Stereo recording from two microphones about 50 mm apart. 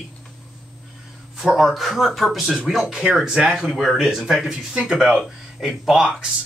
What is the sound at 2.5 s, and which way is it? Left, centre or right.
A man's voice, centre.